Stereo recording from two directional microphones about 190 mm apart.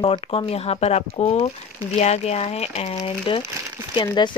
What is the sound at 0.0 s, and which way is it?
Speech, 25° left (ahead or behind).